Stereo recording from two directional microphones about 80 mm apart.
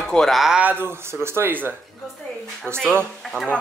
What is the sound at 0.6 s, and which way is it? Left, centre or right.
Speech, right.